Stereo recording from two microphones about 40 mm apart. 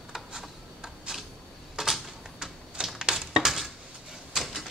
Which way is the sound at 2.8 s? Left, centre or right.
Right.